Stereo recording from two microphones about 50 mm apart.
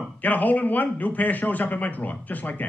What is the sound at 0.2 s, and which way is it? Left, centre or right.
A man's voice, left.